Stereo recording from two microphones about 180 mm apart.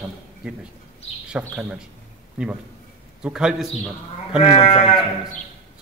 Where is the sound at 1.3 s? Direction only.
5° right (ahead or behind).